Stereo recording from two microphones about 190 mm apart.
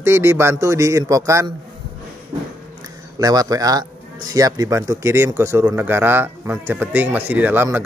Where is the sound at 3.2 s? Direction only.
20° right (ahead or behind).